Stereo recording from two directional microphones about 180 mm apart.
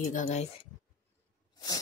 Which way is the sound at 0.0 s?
45° left (ahead or behind).